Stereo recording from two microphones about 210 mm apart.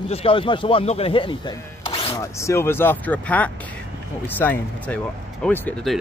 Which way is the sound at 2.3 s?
15° left (ahead or behind).